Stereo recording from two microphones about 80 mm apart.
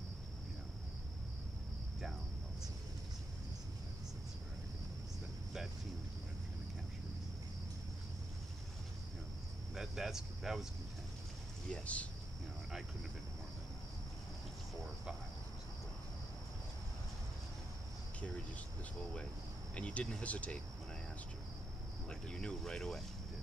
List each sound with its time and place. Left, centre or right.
9.8 s speech: centre
11.7 s speech: centre
19.7 s speech: centre
22.3 s speech: centre